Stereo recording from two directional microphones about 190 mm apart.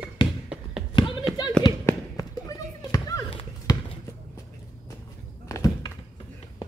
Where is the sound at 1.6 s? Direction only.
20° left (ahead or behind).